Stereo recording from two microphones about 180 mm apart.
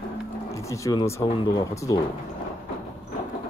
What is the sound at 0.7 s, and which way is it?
Speech, 15° left (ahead or behind).